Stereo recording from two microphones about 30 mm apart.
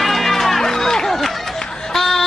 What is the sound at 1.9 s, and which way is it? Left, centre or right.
Fowl, centre.